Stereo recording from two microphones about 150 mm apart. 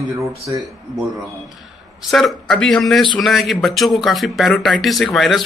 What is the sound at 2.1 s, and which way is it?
Speech, centre (ahead or behind).